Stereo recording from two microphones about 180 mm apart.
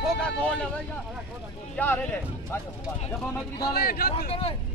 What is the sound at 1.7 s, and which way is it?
Music, 10° left (ahead or behind).